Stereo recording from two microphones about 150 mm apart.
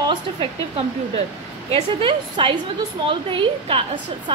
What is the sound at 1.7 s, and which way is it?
A woman's voice, 35° right (ahead or behind).